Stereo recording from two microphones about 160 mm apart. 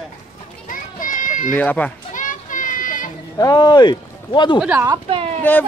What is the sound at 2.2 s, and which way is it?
Children playing, 55° left (ahead or behind).